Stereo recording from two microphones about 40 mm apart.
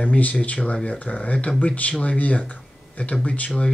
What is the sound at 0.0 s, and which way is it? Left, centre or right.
Speech, left.